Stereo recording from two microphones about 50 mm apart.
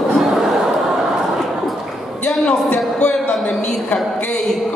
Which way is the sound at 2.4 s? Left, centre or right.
Left.